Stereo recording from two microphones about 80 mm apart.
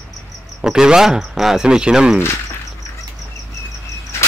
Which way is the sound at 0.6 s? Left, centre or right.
Centre.